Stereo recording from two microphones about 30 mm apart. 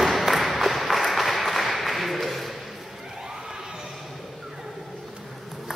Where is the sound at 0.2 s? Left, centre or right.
Centre.